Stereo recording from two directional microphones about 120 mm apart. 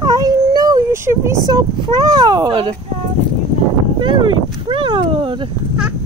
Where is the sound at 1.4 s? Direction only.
35° right (ahead or behind).